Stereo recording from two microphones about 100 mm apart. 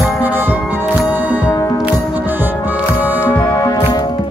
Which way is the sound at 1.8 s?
20° right (ahead or behind).